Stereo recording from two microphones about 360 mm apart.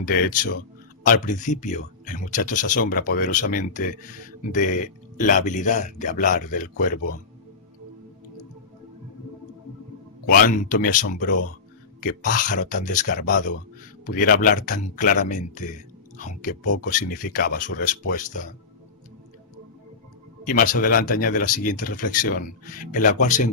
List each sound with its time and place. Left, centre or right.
0.0 s speech: left
10.2 s speech: left
20.4 s speech: left